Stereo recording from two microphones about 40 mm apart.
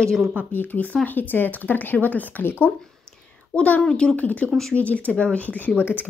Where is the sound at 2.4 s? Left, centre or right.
Left.